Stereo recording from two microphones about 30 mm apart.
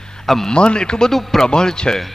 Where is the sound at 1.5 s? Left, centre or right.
Left.